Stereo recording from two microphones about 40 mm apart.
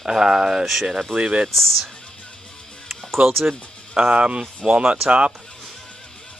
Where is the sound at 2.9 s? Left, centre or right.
Centre.